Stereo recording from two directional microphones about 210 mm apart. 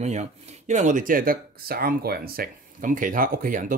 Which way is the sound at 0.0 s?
30° right (ahead or behind).